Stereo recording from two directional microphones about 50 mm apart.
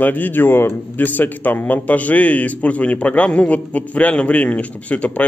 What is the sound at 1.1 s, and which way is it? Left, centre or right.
A man's voice, left.